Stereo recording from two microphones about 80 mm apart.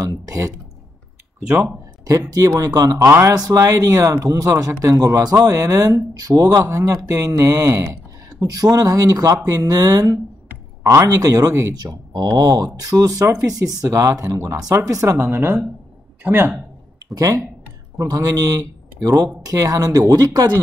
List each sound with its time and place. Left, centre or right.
0.0 s a man's voice: right
2.0 s a man's voice: right
3.1 s speech: right
3.3 s a man's voice: right
6.6 s speech: right
8.4 s a man's voice: right
11.7 s a man's voice: right
15.2 s a woman's voice: right
17.1 s a man's voice: right